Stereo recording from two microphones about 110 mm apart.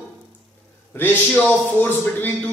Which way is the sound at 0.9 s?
15° left (ahead or behind).